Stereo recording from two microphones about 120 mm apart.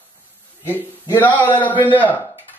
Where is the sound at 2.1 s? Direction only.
15° left (ahead or behind).